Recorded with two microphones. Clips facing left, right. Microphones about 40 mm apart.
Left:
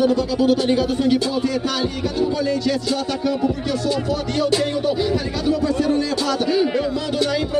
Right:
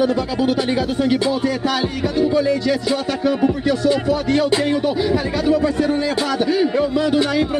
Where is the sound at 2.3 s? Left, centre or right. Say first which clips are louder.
Right 3 dB; centre.